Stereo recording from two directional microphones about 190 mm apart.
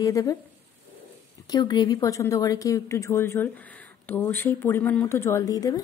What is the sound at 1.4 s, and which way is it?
Speech, 20° left (ahead or behind).